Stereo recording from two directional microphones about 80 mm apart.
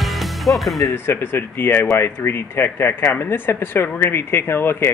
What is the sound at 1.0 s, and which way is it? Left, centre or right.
Speech, left.